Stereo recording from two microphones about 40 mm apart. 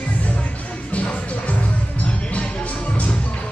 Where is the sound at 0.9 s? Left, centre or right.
Left.